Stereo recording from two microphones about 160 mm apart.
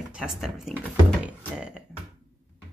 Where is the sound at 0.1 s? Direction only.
5° right (ahead or behind).